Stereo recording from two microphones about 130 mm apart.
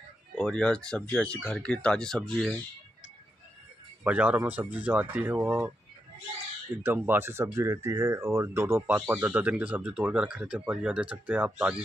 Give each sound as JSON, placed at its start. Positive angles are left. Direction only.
{"t": 0.4, "sound": "speech", "side_deg": 5}
{"t": 4.0, "sound": "speech", "side_deg": -10}
{"t": 6.8, "sound": "speech", "side_deg": -15}